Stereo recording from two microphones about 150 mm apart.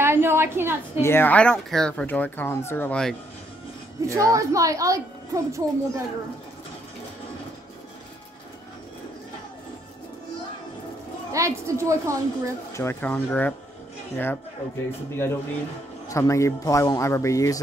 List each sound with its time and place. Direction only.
0.0 s a sound: 15° right (ahead or behind)
1.0 s speech: 15° left (ahead or behind)
4.0 s a woman's voice: 20° right (ahead or behind)
11.3 s a woman's voice: 20° right (ahead or behind)
12.7 s speech: 15° left (ahead or behind)